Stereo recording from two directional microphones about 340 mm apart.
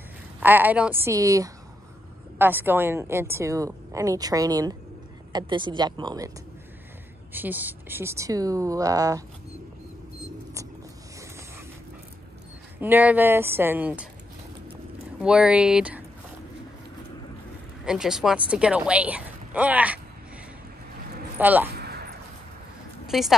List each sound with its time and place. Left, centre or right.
0.4 s a woman's voice: centre
7.3 s a woman's voice: centre
12.8 s a woman's voice: centre
15.1 s a woman's voice: centre
17.8 s a woman's voice: centre
21.4 s speech: centre
21.6 s a sound: right
23.0 s a sound: centre